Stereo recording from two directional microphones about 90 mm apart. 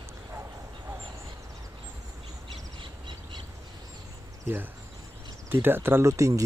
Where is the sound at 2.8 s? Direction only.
65° right (ahead or behind).